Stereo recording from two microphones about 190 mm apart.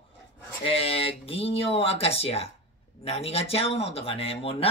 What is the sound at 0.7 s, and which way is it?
Speech, 30° left (ahead or behind).